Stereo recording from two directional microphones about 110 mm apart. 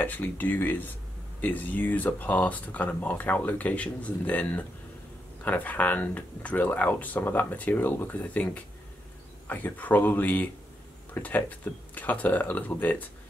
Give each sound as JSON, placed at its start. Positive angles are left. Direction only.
{"t": 0.0, "sound": "speech", "side_deg": 15}